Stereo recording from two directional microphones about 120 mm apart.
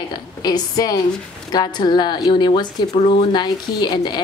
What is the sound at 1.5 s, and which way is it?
A woman's voice, 35° left (ahead or behind).